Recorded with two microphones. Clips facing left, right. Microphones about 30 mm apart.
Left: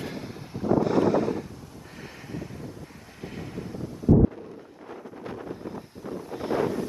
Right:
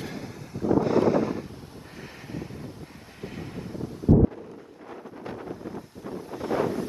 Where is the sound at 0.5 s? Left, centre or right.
Left.